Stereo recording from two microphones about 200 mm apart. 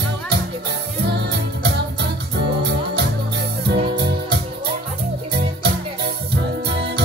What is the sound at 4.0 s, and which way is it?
Music, 55° right (ahead or behind).